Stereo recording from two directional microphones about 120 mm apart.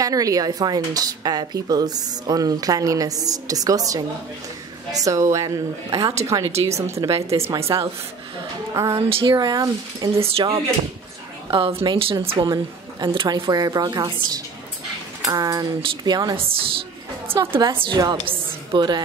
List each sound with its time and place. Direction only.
0.0 s a woman's voice: 30° right (ahead or behind)
6.4 s speech: 60° right (ahead or behind)
6.7 s a woman's voice: 25° right (ahead or behind)
10.1 s a woman's voice: 55° right (ahead or behind)
11.5 s a woman's voice: 45° right (ahead or behind)
16.3 s a woman's voice: 50° right (ahead or behind)
18.2 s a sound: 40° right (ahead or behind)